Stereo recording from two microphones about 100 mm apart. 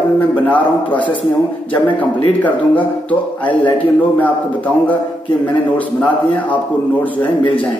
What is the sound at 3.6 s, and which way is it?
A man's voice, 15° left (ahead or behind).